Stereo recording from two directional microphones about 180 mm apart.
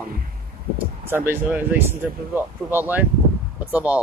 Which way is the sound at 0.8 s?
10° right (ahead or behind).